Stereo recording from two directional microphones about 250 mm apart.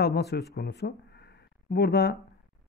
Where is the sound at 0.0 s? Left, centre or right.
Left.